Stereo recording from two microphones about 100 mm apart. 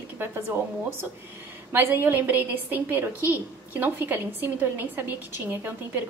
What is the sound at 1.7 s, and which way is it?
A woman's voice, 20° right (ahead or behind).